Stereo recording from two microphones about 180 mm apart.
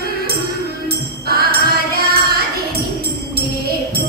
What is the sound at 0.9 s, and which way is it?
Music, 60° right (ahead or behind).